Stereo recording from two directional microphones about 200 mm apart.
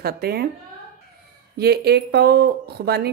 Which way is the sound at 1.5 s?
55° right (ahead or behind).